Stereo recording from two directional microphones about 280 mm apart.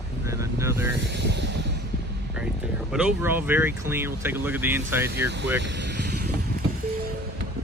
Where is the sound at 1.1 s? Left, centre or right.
Right.